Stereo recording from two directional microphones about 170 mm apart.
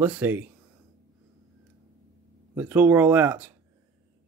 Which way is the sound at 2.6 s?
10° right (ahead or behind).